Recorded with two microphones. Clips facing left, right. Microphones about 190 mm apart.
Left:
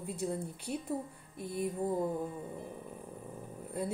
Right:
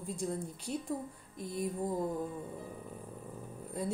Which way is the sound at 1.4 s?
60° left (ahead or behind).